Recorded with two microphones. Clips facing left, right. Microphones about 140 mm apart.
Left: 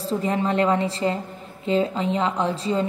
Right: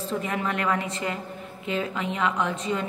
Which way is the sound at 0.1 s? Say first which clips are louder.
Left 6 dB; 30° left (ahead or behind).